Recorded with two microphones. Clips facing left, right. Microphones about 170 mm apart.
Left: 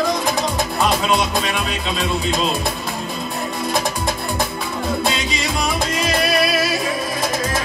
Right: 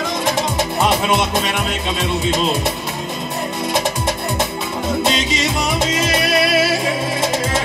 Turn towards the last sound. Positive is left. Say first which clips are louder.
# right 2 dB
turn(degrees=-25)  # may be behind; listen again after turning